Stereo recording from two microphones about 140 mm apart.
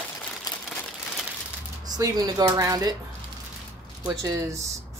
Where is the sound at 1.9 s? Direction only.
30° right (ahead or behind).